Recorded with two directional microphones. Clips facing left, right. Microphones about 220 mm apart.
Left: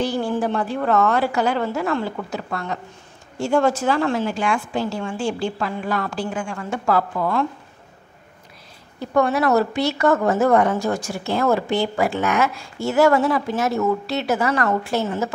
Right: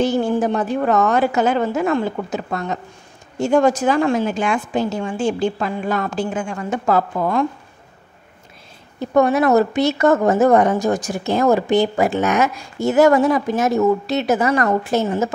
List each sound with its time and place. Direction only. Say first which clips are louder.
0.0 s a woman's voice: right 4 dB; 20° right (ahead or behind)
9.0 s a woman's voice: right 4 dB; 20° right (ahead or behind)